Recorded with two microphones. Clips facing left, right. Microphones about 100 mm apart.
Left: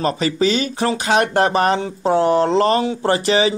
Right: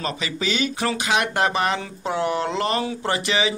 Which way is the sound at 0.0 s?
40° left (ahead or behind).